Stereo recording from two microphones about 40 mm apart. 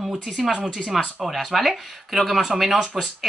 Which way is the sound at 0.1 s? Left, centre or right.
Centre.